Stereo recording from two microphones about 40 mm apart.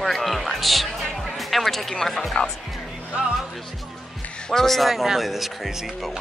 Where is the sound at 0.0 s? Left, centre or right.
Centre.